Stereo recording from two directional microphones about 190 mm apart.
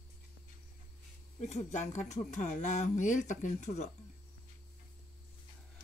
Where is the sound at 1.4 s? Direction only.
35° left (ahead or behind).